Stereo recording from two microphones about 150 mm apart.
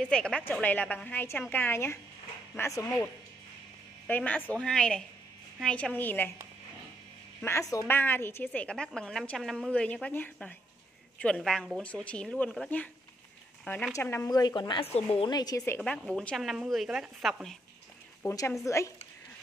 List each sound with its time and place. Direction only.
0.0 s a woman's voice: 5° left (ahead or behind)
4.1 s a woman's voice: 10° left (ahead or behind)
7.4 s a woman's voice: 20° left (ahead or behind)
13.9 s a woman's voice: 20° left (ahead or behind); by 15.3 s 40° left (ahead or behind)
15.3 s a woman's voice: 25° left (ahead or behind)
16.1 s speech: 5° left (ahead or behind)
18.2 s a woman's voice: 20° left (ahead or behind)